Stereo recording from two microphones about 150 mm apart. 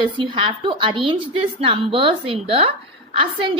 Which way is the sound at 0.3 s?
35° right (ahead or behind).